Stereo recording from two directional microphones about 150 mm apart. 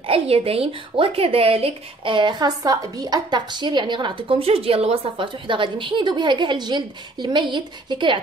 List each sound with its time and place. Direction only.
0.0 s speech: 40° right (ahead or behind)